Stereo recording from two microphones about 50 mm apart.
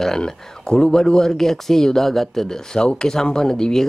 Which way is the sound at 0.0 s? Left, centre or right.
Centre.